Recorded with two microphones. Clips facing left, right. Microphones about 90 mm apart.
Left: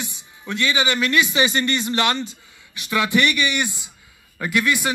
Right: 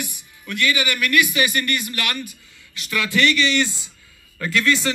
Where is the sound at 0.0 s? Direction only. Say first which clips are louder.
Even; 25° left (ahead or behind).